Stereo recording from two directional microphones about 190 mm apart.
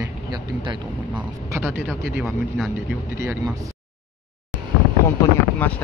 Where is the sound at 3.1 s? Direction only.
15° right (ahead or behind).